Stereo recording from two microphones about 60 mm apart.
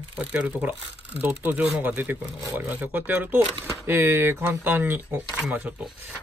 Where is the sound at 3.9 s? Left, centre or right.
Right.